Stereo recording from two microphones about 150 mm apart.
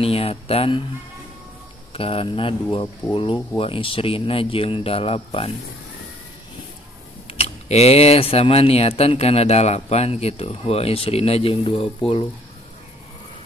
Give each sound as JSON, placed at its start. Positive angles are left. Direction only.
{"t": 0.0, "sound": "speech", "side_deg": 40}
{"t": 2.0, "sound": "speech", "side_deg": 40}
{"t": 7.2, "sound": "speech", "side_deg": 40}